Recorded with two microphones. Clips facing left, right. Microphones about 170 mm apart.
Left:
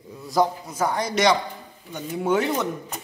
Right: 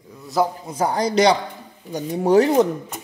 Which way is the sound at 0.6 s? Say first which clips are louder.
Right 4 dB; 30° right (ahead or behind).